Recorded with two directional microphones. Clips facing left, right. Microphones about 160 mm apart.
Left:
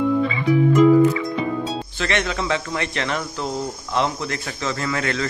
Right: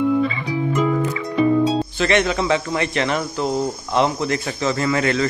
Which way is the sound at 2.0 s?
15° right (ahead or behind).